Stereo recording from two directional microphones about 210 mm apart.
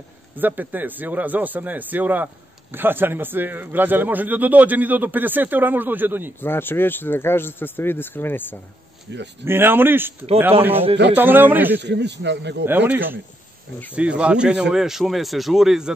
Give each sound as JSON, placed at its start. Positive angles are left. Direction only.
{"t": 0.4, "sound": "a man's voice", "side_deg": -10}
{"t": 6.4, "sound": "speech", "side_deg": 10}
{"t": 9.4, "sound": "a man's voice", "side_deg": -10}
{"t": 11.7, "sound": "speech", "side_deg": -55}
{"t": 12.6, "sound": "a man's voice", "side_deg": -10}